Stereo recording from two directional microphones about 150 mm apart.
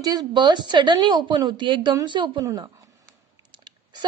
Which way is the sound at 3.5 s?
30° right (ahead or behind).